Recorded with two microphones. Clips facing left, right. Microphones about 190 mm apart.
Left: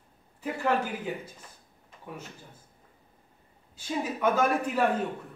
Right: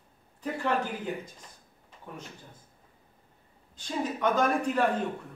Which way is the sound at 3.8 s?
5° left (ahead or behind).